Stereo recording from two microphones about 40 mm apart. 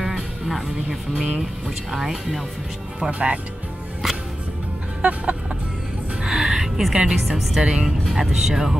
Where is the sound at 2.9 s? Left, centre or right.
Right.